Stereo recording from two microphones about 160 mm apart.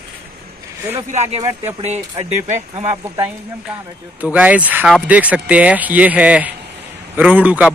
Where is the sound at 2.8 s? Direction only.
15° right (ahead or behind).